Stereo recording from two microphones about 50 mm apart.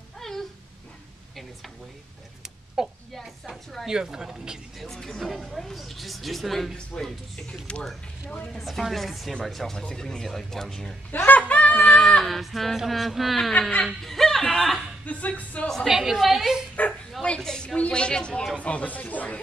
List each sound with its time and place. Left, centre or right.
0.2 s a sound: centre
2.8 s speech: centre
4.7 s speech: centre
7.7 s speech: left
8.5 s speech: centre
11.2 s a sound: left
11.8 s speech: centre
13.5 s speech: left
14.0 s speech: centre
15.0 s speech: left
15.9 s speech: centre
16.8 s speech: left
17.2 s a woman's voice: centre
17.7 s speech: left